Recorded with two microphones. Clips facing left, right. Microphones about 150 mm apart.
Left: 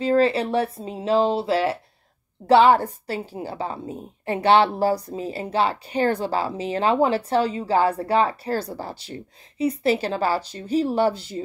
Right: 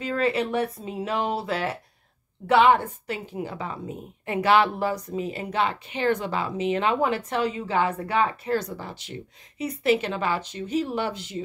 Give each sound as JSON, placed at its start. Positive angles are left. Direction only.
{"t": 0.0, "sound": "a woman's voice", "side_deg": 30}